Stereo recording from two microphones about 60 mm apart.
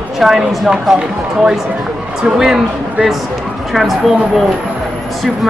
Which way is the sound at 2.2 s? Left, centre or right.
Centre.